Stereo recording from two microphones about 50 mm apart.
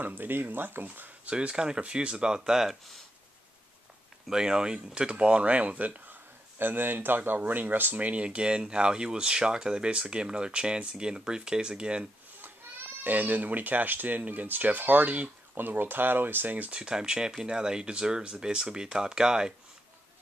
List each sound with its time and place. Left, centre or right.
0.0 s speech: right
1.3 s speech: centre
4.3 s speech: centre
13.0 s speech: right
15.5 s speech: right
16.8 s speech: centre